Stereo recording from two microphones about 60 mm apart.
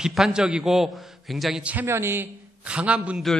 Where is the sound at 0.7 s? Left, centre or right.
Centre.